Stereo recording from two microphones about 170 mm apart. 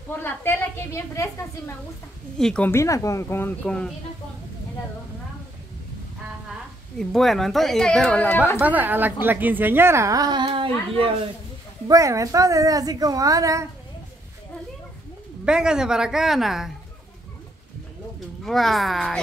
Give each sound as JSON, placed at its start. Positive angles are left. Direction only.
{"t": 0.1, "sound": "a woman's voice", "side_deg": 10}
{"t": 2.3, "sound": "a woman's voice", "side_deg": 5}
{"t": 7.0, "sound": "speech", "side_deg": 0}
{"t": 8.5, "sound": "a woman's voice", "side_deg": -10}
{"t": 11.9, "sound": "speech", "side_deg": -20}
{"t": 15.4, "sound": "speech", "side_deg": -5}
{"t": 18.4, "sound": "speech", "side_deg": 0}